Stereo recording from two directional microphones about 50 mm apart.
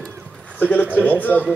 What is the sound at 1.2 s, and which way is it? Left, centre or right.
Speech, left.